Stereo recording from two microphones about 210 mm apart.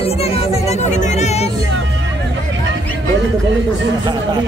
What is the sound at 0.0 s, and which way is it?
Speech, 30° left (ahead or behind).